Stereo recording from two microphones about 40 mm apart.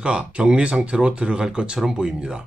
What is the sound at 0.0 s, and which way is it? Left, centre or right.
Speech, right.